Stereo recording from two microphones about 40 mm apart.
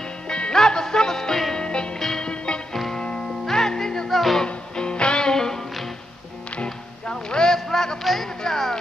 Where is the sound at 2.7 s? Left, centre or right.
Centre.